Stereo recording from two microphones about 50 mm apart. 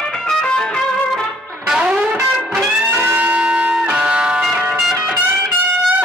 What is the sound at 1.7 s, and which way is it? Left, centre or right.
Music, centre.